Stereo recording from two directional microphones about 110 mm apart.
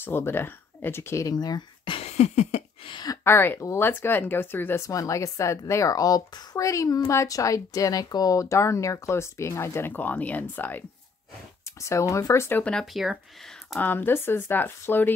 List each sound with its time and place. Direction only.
0.0 s speech: 20° left (ahead or behind)
1.3 s speech: 40° left (ahead or behind)
2.0 s a sound: 80° left
2.8 s a woman's voice: 45° left (ahead or behind)
3.3 s speech: 20° left (ahead or behind)
4.8 s speech: 30° left (ahead or behind)
11.6 s speech: 25° left (ahead or behind)
12.9 s speech: centre (ahead or behind)
13.7 s speech: 20° left (ahead or behind)